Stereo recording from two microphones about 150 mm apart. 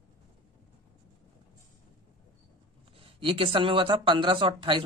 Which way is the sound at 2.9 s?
35° right (ahead or behind).